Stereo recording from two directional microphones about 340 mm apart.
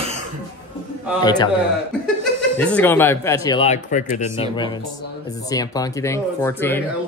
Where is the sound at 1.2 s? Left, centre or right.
Centre.